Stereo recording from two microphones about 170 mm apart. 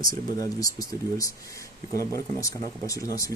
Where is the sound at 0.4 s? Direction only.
20° left (ahead or behind).